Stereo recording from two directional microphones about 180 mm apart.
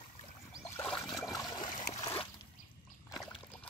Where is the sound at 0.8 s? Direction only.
5° left (ahead or behind).